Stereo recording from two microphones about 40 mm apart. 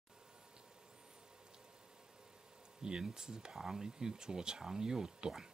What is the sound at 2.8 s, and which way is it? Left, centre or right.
Speech, centre.